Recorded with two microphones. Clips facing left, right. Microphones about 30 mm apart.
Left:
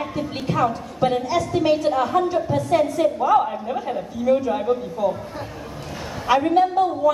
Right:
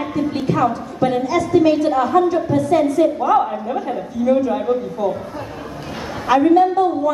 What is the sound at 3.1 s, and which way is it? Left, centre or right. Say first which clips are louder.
A woman's voice: right 2 dB; centre.